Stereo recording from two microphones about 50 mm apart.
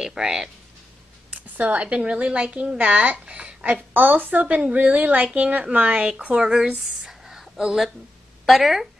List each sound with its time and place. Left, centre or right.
0.0 s speech: centre
1.3 s a woman's voice: right
3.9 s a woman's voice: right
6.0 s a woman's voice: centre
6.8 s a sound: centre
8.5 s speech: centre